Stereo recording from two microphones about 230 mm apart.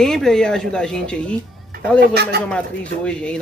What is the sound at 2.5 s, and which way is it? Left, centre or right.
Speech, centre.